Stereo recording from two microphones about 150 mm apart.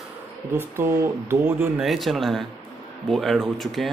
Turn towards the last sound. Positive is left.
turn(degrees=0)  # may be behind; listen again after turning